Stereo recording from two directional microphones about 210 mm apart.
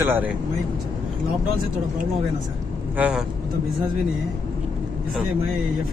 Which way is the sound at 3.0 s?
5° right (ahead or behind).